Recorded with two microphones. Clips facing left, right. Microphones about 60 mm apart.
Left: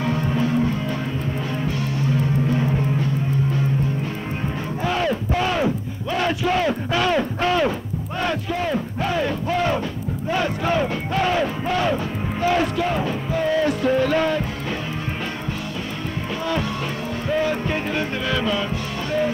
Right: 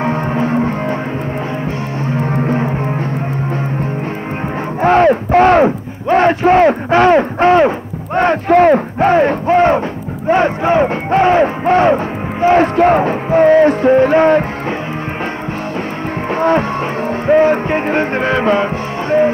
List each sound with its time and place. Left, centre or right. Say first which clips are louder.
0.0 s music: right 6 dB; right
2.0 s music: right 5 dB; right
4.8 s a sound: right 13 dB; right
8.2 s battle cry: right 15 dB; right
16.3 s music: right 12 dB; right